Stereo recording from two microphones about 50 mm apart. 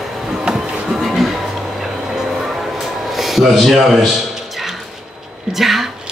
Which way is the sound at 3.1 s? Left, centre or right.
Centre.